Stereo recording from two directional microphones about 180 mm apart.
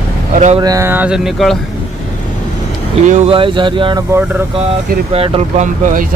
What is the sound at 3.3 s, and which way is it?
Speech, 30° right (ahead or behind).